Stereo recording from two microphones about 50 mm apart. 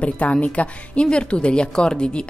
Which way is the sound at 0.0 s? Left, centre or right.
Left.